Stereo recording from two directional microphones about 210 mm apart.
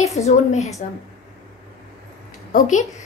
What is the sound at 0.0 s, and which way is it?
Speech, 30° left (ahead or behind).